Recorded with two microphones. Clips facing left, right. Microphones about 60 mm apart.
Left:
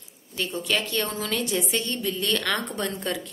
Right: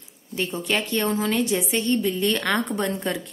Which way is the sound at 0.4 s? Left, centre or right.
Right.